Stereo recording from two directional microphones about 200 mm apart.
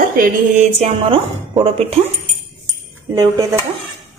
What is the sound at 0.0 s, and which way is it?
Music, 40° right (ahead or behind).